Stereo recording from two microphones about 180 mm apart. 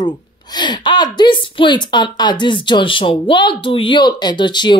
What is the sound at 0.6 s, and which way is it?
A woman's voice, 25° left (ahead or behind).